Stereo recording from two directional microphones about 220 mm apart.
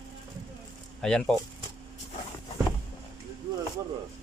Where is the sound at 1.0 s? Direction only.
5° left (ahead or behind).